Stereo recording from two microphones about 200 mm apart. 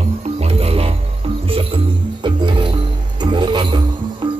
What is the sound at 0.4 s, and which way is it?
Music, 30° right (ahead or behind).